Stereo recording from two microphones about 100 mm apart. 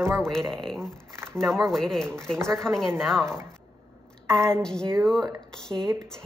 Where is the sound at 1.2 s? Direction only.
25° right (ahead or behind).